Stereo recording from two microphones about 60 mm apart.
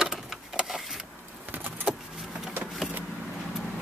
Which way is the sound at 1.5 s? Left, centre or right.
Right.